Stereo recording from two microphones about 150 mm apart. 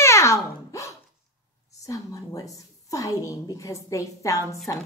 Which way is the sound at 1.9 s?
20° left (ahead or behind).